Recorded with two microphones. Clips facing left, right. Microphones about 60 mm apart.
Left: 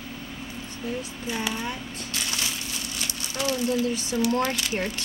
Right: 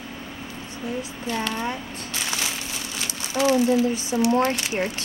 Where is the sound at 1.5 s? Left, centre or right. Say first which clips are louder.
Right 3 dB; right.